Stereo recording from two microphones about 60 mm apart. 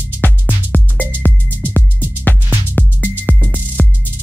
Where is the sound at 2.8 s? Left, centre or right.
Left.